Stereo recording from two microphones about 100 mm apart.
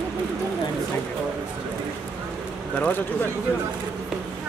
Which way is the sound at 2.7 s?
15° left (ahead or behind).